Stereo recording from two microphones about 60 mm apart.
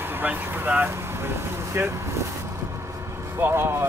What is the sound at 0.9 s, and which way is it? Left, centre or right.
Speech, right.